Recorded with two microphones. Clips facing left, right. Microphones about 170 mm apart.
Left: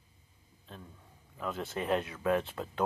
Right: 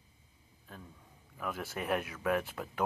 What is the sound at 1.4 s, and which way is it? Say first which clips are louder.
Speech: left 2 dB; 20° left (ahead or behind).